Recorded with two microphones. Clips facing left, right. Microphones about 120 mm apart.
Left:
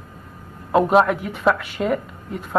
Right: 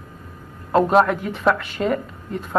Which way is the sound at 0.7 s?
5° left (ahead or behind).